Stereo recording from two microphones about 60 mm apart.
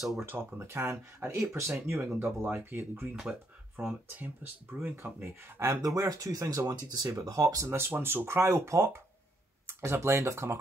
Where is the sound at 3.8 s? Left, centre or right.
Right.